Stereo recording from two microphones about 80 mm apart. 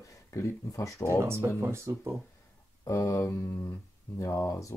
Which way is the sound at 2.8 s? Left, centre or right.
Left.